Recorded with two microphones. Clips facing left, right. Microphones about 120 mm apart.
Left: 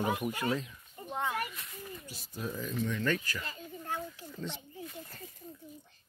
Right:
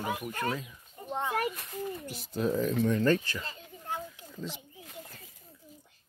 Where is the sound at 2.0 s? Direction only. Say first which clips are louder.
Right 9 dB; 65° right (ahead or behind); by 3.3 s 35° right (ahead or behind).